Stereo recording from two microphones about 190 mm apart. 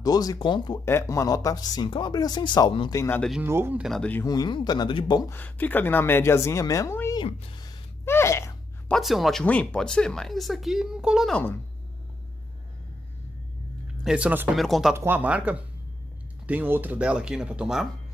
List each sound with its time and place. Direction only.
0.0 s speech: 20° left (ahead or behind)
3.0 s a woman's voice: 10° left (ahead or behind)
3.4 s speech: 10° right (ahead or behind)
3.8 s speech: 5° left (ahead or behind)
4.3 s speech: 20° left (ahead or behind)
5.3 s a woman's voice: 10° left (ahead or behind)
7.2 s speech: 25° left (ahead or behind)
8.0 s sneeze: 15° left (ahead or behind)
8.9 s speech: centre (ahead or behind)
14.0 s speech: 5° right (ahead or behind)